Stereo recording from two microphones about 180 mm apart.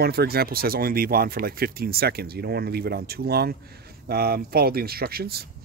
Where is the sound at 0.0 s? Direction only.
60° right (ahead or behind).